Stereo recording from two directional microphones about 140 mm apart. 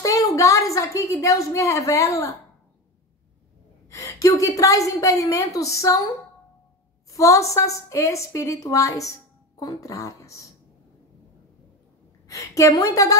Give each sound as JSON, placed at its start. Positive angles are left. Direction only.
{"t": 0.0, "sound": "a woman's voice", "side_deg": 25}
{"t": 3.9, "sound": "a woman's voice", "side_deg": 20}
{"t": 7.1, "sound": "a woman's voice", "side_deg": 20}
{"t": 12.3, "sound": "a woman's voice", "side_deg": 20}